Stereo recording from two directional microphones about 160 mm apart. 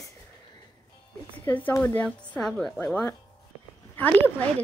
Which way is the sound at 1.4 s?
15° left (ahead or behind).